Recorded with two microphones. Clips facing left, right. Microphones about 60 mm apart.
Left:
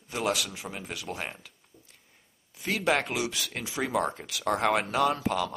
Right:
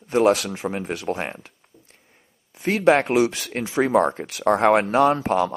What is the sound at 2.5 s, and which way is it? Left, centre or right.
Speech, right.